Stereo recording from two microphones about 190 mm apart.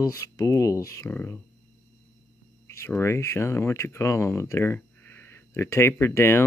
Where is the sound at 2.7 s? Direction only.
15° left (ahead or behind).